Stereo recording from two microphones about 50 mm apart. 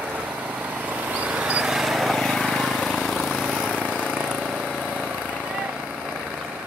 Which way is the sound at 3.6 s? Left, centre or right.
Left.